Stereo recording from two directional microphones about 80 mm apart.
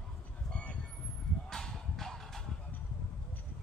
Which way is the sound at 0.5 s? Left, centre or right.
Centre.